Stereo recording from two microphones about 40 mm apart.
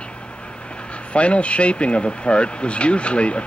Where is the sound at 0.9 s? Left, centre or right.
Left.